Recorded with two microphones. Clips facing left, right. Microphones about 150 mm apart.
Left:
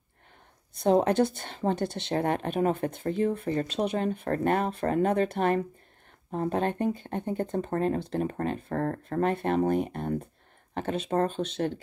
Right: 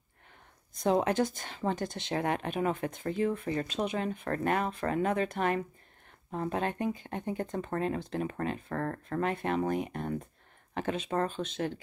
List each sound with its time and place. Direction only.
0.8 s speech: 35° left (ahead or behind)
1.1 s speech: 65° left (ahead or behind)
1.4 s speech: 35° left (ahead or behind)